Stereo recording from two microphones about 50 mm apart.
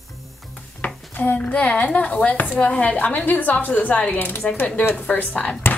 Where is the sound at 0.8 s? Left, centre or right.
Left.